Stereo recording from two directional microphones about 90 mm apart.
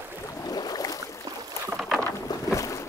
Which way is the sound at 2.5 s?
40° left (ahead or behind).